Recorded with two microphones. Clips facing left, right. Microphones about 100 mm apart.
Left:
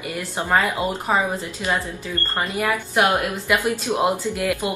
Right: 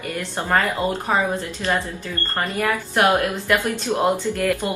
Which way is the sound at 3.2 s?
15° left (ahead or behind).